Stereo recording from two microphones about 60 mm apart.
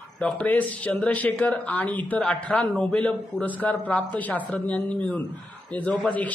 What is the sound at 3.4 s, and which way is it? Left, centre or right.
Speech, left.